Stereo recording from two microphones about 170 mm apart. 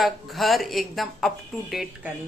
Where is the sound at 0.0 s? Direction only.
Centre (ahead or behind).